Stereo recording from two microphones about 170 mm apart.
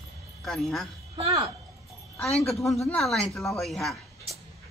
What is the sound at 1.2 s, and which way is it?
Speech, 20° right (ahead or behind).